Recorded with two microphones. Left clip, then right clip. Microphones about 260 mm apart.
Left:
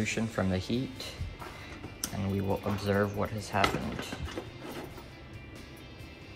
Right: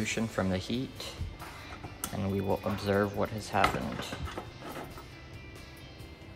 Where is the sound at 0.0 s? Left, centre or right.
Centre.